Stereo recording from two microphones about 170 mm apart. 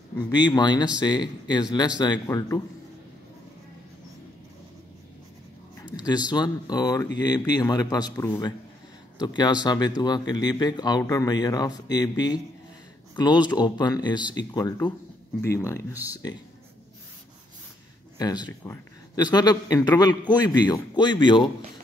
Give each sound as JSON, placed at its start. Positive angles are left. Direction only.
{"t": 0.3, "sound": "speech", "side_deg": 25}
{"t": 5.9, "sound": "speech", "side_deg": 25}
{"t": 18.1, "sound": "speech", "side_deg": 25}